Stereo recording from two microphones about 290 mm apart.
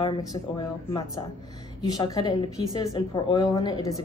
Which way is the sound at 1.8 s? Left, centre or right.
Centre.